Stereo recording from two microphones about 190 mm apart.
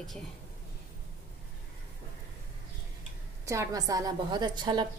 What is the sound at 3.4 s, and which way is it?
A woman's voice, 15° right (ahead or behind).